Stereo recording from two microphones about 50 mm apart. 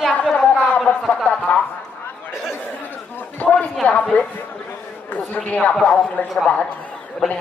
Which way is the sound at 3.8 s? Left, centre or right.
Left.